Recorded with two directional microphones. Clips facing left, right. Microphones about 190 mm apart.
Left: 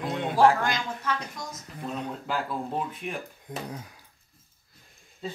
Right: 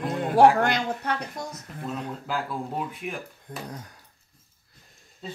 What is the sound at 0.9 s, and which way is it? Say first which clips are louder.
Speech: right 3 dB; 65° right (ahead or behind).